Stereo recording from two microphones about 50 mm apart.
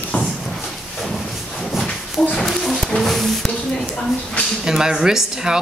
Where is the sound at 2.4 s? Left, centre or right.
Centre.